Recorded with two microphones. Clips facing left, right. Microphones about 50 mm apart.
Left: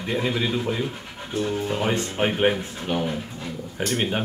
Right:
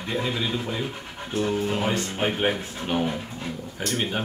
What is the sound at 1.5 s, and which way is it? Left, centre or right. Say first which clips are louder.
Speech: even; centre.